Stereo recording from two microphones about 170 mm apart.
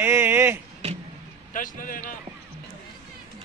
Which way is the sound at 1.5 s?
50° left (ahead or behind).